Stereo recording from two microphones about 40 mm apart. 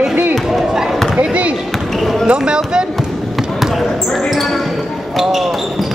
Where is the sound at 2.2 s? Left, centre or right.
Right.